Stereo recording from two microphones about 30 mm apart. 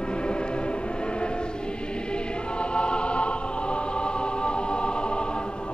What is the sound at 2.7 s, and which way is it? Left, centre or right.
Music, left.